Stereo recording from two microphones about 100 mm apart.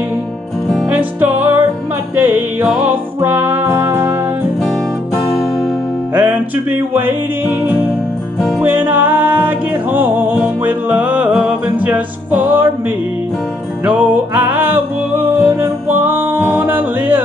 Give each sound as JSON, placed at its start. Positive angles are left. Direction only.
{"t": 0.8, "sound": "music", "side_deg": -15}
{"t": 6.1, "sound": "music", "side_deg": -15}
{"t": 8.4, "sound": "music", "side_deg": 0}
{"t": 8.6, "sound": "music", "side_deg": -15}
{"t": 13.8, "sound": "music", "side_deg": -15}